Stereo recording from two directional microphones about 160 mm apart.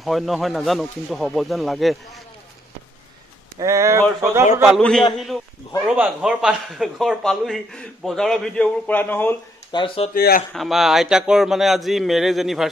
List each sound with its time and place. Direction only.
0.0 s a man's voice: centre (ahead or behind)
3.5 s a man's voice: 20° right (ahead or behind)
4.6 s a man's voice: centre (ahead or behind)
9.7 s speech: 30° left (ahead or behind)
10.1 s speech: 65° left (ahead or behind)
10.5 s a man's voice: centre (ahead or behind)